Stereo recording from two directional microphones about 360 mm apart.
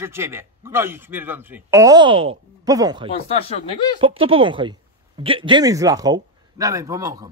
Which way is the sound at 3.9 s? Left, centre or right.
Centre.